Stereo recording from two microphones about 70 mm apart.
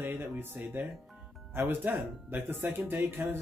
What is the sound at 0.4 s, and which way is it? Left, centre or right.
Speech, right.